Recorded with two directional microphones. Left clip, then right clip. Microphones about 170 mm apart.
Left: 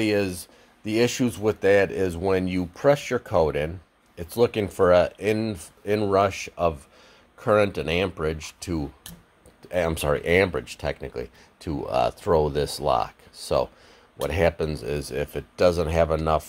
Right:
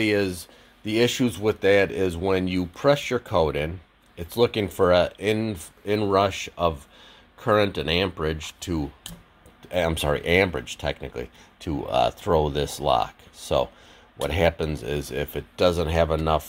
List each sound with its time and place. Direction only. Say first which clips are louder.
0.0 s speech: right 1 dB; 10° left (ahead or behind)
8.7 s speech: even; 20° left (ahead or behind)
9.7 s speech: even; 10° left (ahead or behind)
14.2 s speech: even; 10° left (ahead or behind)